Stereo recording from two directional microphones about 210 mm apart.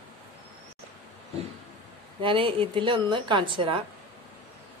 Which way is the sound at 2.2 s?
25° right (ahead or behind).